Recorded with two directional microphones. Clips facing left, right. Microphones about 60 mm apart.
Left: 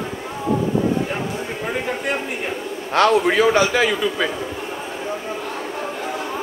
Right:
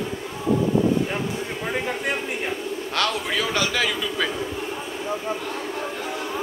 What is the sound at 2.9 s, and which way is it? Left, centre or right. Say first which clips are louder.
A man's voice: left 10 dB; left.